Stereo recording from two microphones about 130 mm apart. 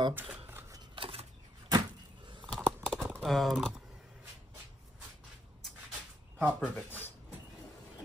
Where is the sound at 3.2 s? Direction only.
Centre (ahead or behind).